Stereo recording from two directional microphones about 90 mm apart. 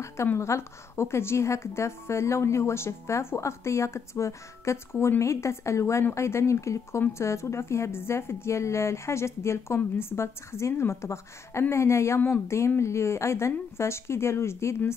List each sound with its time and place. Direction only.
0.0 s a woman's voice: 30° left (ahead or behind)
4.9 s speech: 20° left (ahead or behind)
5.2 s a woman's voice: 35° left (ahead or behind)